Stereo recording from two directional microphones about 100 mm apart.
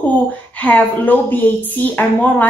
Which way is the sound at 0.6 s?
15° left (ahead or behind).